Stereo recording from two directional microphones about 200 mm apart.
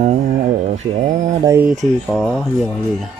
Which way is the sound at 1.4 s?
15° right (ahead or behind).